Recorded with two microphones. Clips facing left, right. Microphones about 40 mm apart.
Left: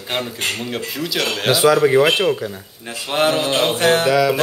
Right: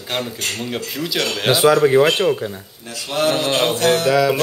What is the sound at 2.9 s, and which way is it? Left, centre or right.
Speech, left.